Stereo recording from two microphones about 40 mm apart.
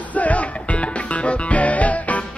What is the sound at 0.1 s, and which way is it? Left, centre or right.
Music, left.